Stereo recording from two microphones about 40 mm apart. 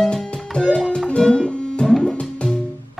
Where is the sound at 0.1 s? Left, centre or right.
Left.